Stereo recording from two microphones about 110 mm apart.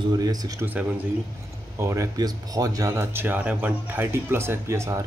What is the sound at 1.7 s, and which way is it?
Speech, 25° right (ahead or behind).